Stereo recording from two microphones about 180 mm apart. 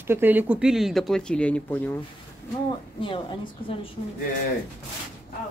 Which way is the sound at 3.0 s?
30° left (ahead or behind).